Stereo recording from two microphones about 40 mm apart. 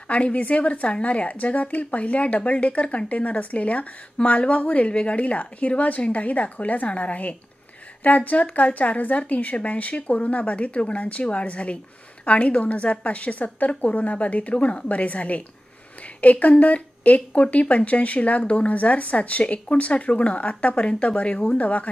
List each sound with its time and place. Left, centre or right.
0.1 s speech: left